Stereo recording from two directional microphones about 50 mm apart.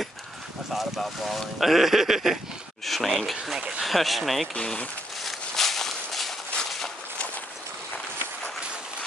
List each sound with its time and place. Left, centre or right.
0.7 s speech: centre
3.5 s speech: centre
3.8 s speech: centre
4.6 s speech: centre
5.2 s walk: centre